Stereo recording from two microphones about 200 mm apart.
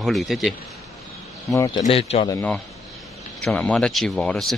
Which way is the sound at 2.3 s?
10° left (ahead or behind).